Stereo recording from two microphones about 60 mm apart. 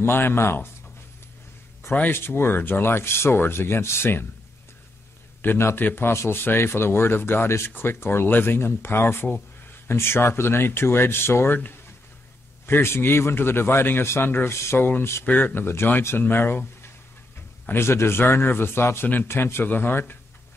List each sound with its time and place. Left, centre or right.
0.0 s speech: left
1.8 s speech: left
5.4 s speech: left
15.2 s speech: left